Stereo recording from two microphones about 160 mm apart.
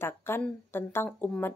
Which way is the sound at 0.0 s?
15° left (ahead or behind).